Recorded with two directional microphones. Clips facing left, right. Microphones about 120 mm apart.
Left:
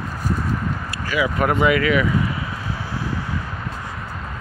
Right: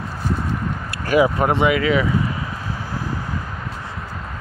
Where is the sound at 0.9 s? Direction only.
50° right (ahead or behind).